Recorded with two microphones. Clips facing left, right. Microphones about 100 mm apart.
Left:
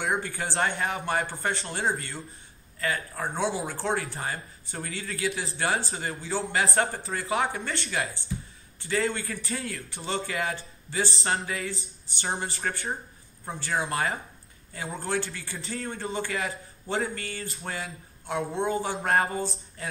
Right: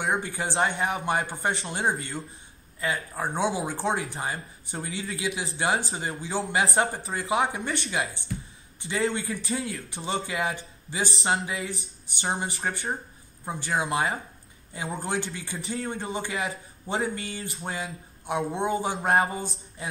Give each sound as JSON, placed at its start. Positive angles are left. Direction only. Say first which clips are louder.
{"t": 0.0, "sound": "speech", "louder": "right 1 dB", "side_deg": -20}